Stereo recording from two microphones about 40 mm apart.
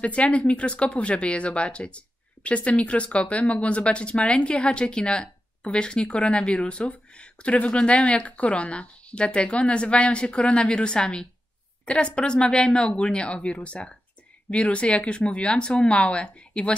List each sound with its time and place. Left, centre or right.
0.0 s speech: left